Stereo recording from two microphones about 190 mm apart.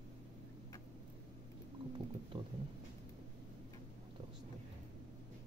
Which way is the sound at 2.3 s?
30° right (ahead or behind).